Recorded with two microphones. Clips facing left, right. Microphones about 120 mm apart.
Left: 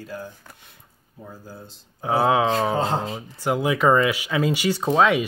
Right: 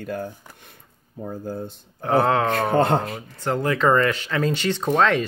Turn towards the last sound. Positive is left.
turn(degrees=10)  # may be behind; listen again after turning